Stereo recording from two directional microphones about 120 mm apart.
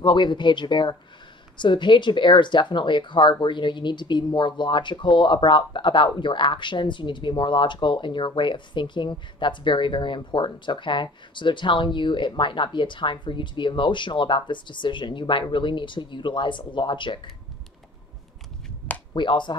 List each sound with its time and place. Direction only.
0.0 s speech: 40° left (ahead or behind)
19.1 s speech: 40° left (ahead or behind)